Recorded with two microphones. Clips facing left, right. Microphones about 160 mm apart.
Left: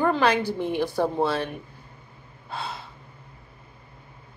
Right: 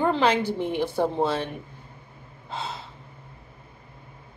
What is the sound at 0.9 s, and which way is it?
Speech, 10° left (ahead or behind).